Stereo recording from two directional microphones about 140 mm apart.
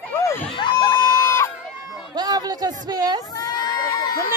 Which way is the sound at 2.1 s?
30° right (ahead or behind).